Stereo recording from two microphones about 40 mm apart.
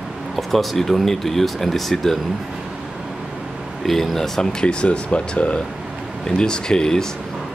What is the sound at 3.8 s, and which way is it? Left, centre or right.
Speech, centre.